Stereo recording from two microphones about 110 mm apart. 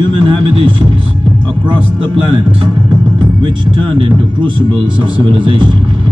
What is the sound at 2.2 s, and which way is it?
Speech, 50° right (ahead or behind).